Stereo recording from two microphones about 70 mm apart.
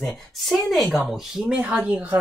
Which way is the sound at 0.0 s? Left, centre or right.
Centre.